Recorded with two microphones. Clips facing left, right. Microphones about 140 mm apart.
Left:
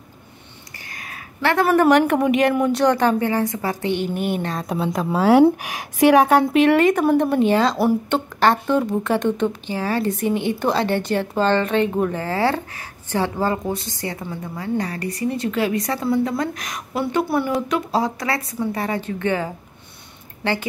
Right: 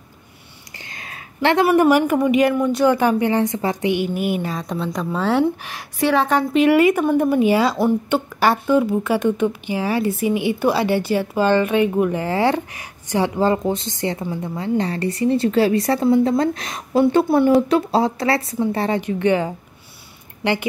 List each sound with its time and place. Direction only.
0.8 s a sound: 25° right (ahead or behind)
1.8 s speech: 5° right (ahead or behind); by 3.9 s 20° right (ahead or behind)
3.9 s a woman's voice: 5° right (ahead or behind); by 6.4 s 10° left (ahead or behind)
6.5 s speech: 5° right (ahead or behind); by 19.5 s 20° right (ahead or behind)